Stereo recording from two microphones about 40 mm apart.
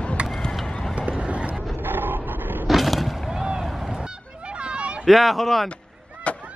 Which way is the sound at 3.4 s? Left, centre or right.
Centre.